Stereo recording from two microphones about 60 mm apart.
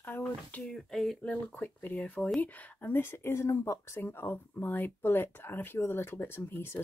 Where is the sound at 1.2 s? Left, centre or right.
Left.